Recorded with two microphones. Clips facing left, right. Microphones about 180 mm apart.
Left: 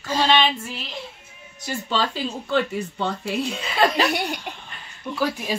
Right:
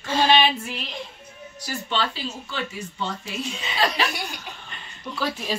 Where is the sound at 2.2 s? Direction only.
60° left (ahead or behind).